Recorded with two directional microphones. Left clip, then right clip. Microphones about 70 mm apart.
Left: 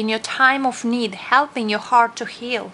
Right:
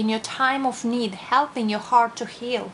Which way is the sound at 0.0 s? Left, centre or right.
Left.